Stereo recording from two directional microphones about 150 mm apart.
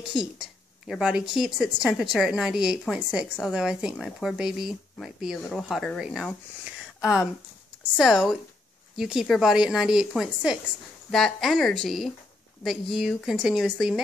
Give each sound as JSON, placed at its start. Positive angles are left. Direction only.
{"t": 0.0, "sound": "a woman's voice", "side_deg": 0}